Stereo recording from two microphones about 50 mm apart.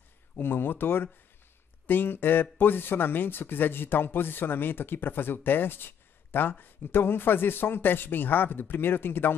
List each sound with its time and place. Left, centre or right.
0.4 s speech: left